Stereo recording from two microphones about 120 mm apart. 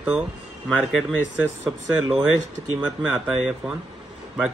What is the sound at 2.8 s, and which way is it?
Speech, 10° right (ahead or behind).